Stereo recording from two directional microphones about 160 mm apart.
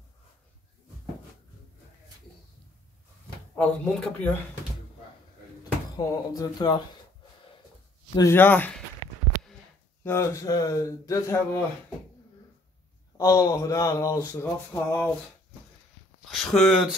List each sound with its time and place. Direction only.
3.5 s speech: 5° left (ahead or behind)
5.6 s speech: 25° left (ahead or behind)
8.1 s speech: 20° left (ahead or behind)
10.0 s a man's voice: 20° left (ahead or behind)
13.2 s a man's voice: 20° left (ahead or behind)
16.3 s speech: centre (ahead or behind)